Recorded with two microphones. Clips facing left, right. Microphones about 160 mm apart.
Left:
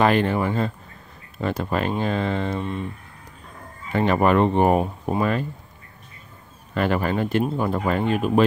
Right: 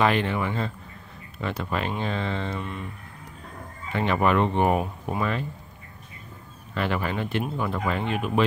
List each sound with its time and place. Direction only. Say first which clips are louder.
0.0 s speech: left 4 dB; 45° left (ahead or behind)
3.9 s speech: left 4 dB; 40° left (ahead or behind)
6.7 s speech: left 5 dB; 45° left (ahead or behind)